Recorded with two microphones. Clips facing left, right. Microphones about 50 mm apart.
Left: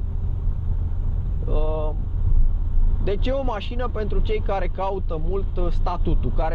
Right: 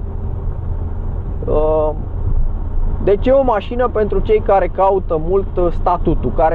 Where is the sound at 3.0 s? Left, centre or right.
Right.